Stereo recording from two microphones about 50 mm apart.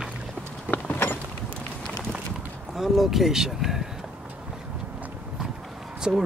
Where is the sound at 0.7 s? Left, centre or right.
Left.